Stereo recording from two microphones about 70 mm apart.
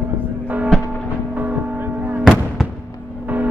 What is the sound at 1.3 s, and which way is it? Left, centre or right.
Music, right.